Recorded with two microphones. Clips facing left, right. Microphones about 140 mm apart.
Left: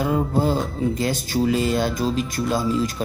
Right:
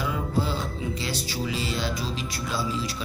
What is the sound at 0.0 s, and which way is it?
Speech, 45° left (ahead or behind).